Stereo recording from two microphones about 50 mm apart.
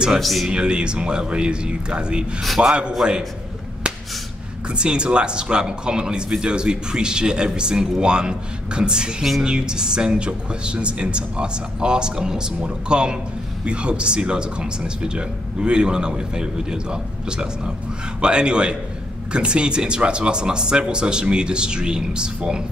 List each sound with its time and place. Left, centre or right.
0.2 s speech: centre
0.5 s speech: centre
4.6 s speech: centre